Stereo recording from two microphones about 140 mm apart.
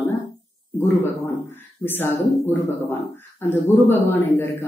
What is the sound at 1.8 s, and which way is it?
A woman's voice, 15° left (ahead or behind).